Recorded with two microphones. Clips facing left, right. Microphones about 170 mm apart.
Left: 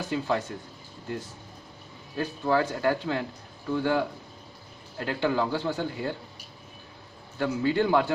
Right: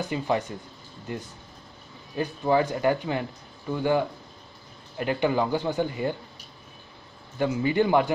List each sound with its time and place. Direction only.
0.0 s speech: 15° right (ahead or behind)
2.1 s speech: 15° right (ahead or behind)
7.3 s speech: 15° right (ahead or behind)